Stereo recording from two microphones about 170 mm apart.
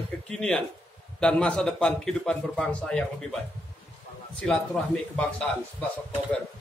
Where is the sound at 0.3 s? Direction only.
5° left (ahead or behind).